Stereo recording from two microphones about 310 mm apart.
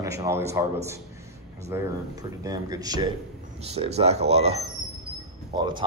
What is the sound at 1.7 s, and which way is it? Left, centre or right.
Speech, centre.